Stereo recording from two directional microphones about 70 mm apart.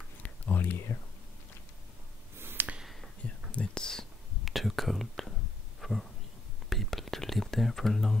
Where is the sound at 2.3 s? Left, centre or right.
Right.